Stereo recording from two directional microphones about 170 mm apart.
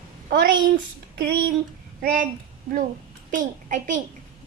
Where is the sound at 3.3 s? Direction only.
50° right (ahead or behind).